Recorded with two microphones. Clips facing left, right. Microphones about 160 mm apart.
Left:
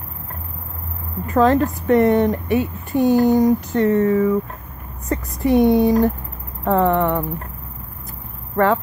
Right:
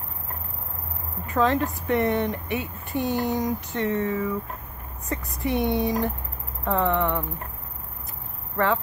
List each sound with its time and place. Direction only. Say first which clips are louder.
1.2 s a woman's voice: left 7 dB; 45° left (ahead or behind)